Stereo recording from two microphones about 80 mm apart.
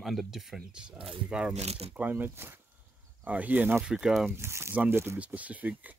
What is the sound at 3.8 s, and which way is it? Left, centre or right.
Speech, centre.